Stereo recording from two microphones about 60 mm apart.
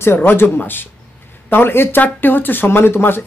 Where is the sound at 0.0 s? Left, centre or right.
Left.